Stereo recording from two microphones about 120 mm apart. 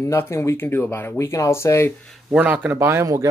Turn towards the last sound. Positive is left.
turn(degrees=-25)  # may be behind; listen again after turning